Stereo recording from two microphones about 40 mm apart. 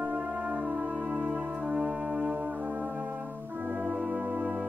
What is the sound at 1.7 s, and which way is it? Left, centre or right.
Brass instrument, right.